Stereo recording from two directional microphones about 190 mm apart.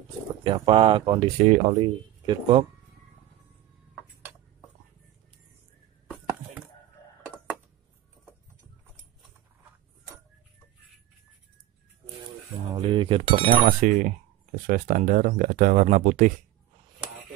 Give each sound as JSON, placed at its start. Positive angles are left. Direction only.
{"t": 0.4, "sound": "speech", "side_deg": -25}
{"t": 1.5, "sound": "speech", "side_deg": -35}
{"t": 12.7, "sound": "speech", "side_deg": -25}
{"t": 13.7, "sound": "speech", "side_deg": -45}